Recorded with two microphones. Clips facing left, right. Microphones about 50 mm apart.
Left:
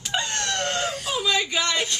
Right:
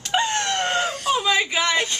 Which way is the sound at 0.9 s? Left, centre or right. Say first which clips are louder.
Right 6 dB; centre.